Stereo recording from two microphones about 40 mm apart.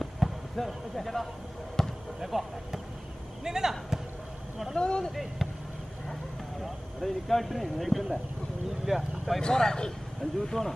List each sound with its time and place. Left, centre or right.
0.2 s basketball bounce: centre
0.6 s speech: centre
1.8 s basketball bounce: centre
2.1 s speech: centre
4.7 s speech: left
5.1 s speech: centre
6.6 s speech: centre
9.4 s speech: centre